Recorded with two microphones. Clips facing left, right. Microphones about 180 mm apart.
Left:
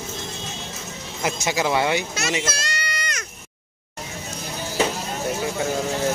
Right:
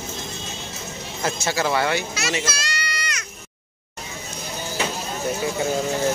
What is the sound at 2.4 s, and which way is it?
Children playing, 50° left (ahead or behind).